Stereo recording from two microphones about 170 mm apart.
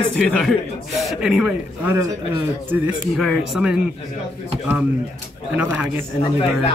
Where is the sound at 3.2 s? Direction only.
Centre (ahead or behind).